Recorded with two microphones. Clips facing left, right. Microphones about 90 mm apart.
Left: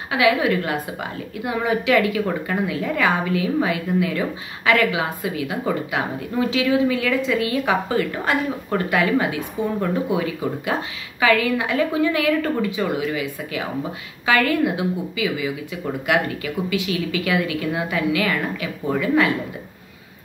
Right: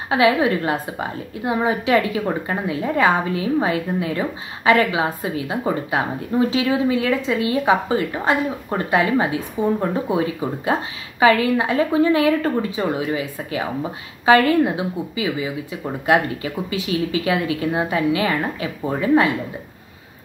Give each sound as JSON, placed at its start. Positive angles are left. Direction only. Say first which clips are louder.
{"t": 0.1, "sound": "a woman's voice", "louder": "right 2 dB", "side_deg": -30}